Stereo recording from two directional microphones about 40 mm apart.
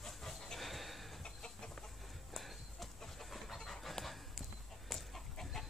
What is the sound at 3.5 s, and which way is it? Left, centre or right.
Pant, centre.